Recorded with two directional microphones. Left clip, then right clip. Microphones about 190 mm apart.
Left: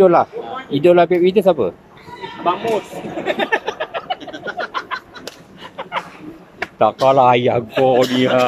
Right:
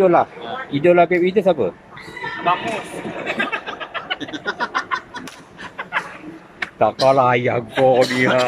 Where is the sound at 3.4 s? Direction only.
55° left (ahead or behind).